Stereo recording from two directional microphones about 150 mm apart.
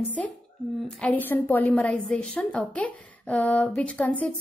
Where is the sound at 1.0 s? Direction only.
10° left (ahead or behind).